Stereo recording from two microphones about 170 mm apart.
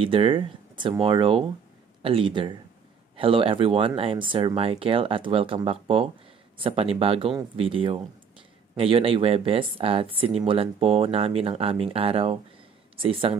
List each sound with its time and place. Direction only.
0.0 s speech: 30° right (ahead or behind)